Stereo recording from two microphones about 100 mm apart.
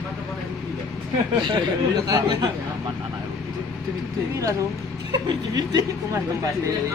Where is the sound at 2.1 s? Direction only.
45° right (ahead or behind).